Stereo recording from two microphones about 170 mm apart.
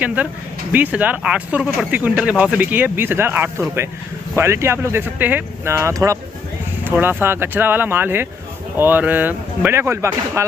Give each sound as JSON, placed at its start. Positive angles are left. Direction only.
{"t": 0.0, "sound": "speech", "side_deg": -10}